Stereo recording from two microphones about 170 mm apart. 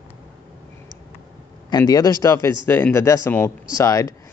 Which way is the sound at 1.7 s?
25° left (ahead or behind).